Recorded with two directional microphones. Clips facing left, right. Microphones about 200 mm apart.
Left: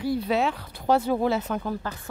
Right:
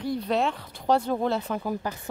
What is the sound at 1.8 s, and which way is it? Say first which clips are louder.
Speech: right 2 dB; 15° right (ahead or behind).